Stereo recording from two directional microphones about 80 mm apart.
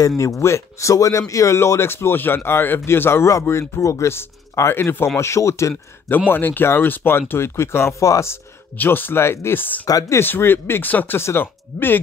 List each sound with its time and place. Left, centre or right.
0.2 s speech: left
6.3 s speech: left
8.7 s speech: left
9.8 s speech: left
10.1 s speech: left